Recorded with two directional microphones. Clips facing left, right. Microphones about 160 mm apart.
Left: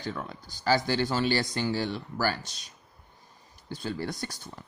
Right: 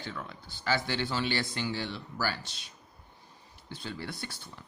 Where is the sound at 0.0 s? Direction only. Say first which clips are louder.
Left 5 dB; 40° left (ahead or behind).